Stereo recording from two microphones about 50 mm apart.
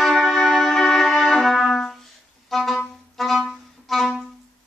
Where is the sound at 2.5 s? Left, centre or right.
Centre.